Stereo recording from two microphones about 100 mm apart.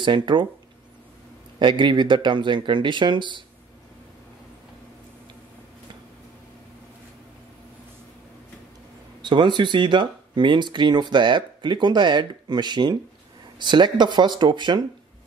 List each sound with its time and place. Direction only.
0.0 s speech: 55° right (ahead or behind)
1.6 s speech: 55° right (ahead or behind)
9.2 s speech: 50° right (ahead or behind)